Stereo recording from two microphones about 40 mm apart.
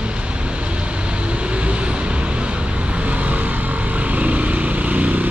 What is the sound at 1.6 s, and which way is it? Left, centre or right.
Vehicle, right.